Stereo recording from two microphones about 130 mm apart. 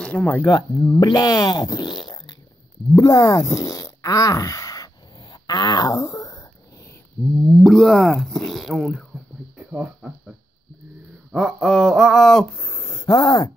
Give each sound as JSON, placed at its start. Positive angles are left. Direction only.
{"t": 0.0, "sound": "speech", "side_deg": 10}
{"t": 0.8, "sound": "speech", "side_deg": 30}
{"t": 2.9, "sound": "a sound", "side_deg": 25}
{"t": 7.5, "sound": "speech", "side_deg": 0}
{"t": 11.3, "sound": "speech", "side_deg": 0}
{"t": 12.5, "sound": "a sound", "side_deg": 15}
{"t": 12.9, "sound": "speech", "side_deg": 35}